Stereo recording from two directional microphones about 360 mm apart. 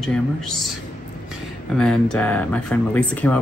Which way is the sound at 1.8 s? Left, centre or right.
Centre.